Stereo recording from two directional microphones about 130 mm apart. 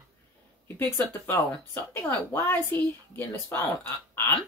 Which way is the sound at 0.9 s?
20° left (ahead or behind).